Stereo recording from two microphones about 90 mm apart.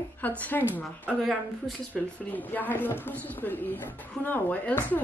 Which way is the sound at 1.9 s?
20° left (ahead or behind).